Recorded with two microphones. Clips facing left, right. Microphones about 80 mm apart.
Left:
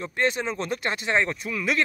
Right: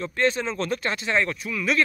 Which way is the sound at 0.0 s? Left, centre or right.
Left.